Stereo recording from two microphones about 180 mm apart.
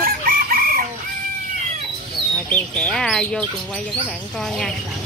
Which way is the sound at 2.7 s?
5° left (ahead or behind).